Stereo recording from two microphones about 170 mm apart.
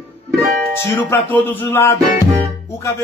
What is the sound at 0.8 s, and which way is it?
Speech, 15° left (ahead or behind).